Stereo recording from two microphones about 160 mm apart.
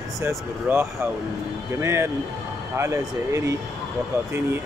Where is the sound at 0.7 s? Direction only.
10° right (ahead or behind).